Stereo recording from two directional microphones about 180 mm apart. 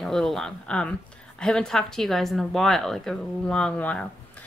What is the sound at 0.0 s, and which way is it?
Speech, centre (ahead or behind).